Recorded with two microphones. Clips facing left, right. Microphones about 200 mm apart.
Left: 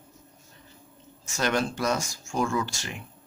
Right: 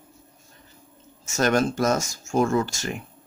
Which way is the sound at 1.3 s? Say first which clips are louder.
Right 5 dB; 45° right (ahead or behind).